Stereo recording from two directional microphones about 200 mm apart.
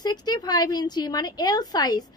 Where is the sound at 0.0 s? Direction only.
20° left (ahead or behind).